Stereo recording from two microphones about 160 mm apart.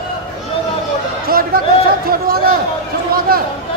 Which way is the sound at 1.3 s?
65° right (ahead or behind).